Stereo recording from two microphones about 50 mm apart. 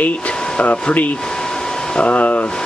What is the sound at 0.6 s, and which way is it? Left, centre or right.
Speech, left.